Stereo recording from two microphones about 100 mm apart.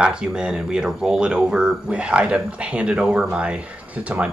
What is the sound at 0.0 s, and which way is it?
Speech, 10° right (ahead or behind).